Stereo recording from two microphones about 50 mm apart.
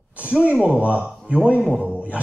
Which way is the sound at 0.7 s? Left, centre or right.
Right.